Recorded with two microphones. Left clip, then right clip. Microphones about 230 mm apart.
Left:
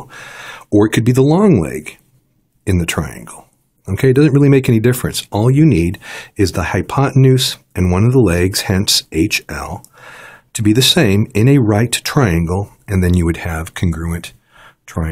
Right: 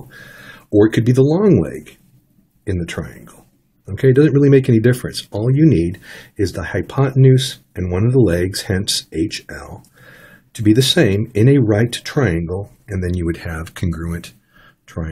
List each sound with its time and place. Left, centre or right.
0.1 s speech: left